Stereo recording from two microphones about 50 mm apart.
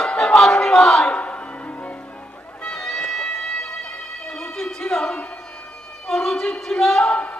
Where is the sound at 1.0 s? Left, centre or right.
Left.